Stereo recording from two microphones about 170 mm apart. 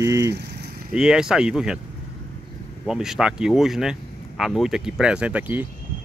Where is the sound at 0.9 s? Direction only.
5° right (ahead or behind).